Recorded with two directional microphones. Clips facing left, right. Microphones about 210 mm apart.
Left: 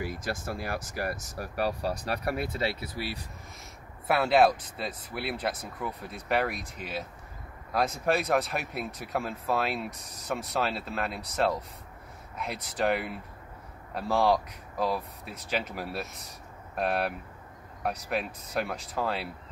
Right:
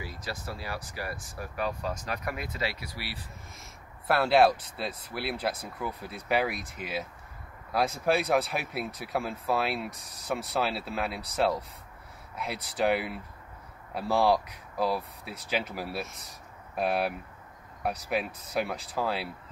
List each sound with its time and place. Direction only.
0.0 s speech: 50° left (ahead or behind); by 2.8 s 30° left (ahead or behind)
4.1 s speech: centre (ahead or behind)